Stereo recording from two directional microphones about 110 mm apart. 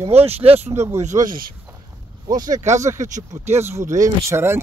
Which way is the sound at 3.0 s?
90° right.